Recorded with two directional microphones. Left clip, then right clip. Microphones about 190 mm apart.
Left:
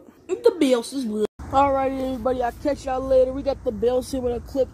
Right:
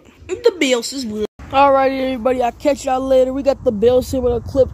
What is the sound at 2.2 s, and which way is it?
Speech, 55° right (ahead or behind).